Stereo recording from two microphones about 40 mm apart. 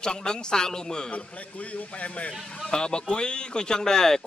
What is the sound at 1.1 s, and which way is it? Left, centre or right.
A man's voice, left.